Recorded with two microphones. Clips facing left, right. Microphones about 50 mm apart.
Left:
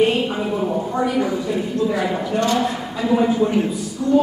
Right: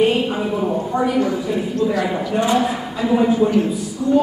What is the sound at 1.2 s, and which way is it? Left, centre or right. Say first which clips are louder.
A woman's voice: right 1 dB; centre.